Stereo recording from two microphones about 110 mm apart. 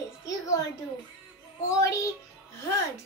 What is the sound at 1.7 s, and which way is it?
Speech, 30° left (ahead or behind).